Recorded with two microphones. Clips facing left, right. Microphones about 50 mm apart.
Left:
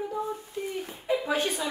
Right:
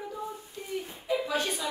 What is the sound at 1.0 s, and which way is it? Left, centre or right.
Speech, left.